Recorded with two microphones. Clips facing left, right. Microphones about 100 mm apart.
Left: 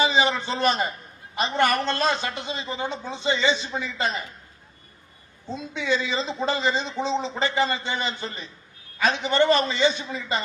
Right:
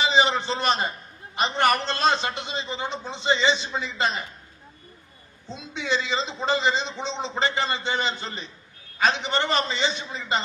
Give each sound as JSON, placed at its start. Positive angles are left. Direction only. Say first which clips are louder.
{"t": 0.1, "sound": "a man's voice", "louder": "right 1 dB", "side_deg": -30}
{"t": 5.9, "sound": "a man's voice", "louder": "left 1 dB", "side_deg": -30}